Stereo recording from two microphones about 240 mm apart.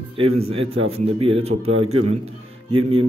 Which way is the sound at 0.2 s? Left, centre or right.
Right.